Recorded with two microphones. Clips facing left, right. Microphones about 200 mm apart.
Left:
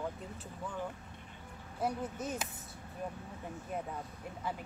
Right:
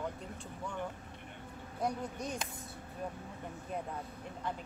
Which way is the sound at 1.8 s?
5° left (ahead or behind).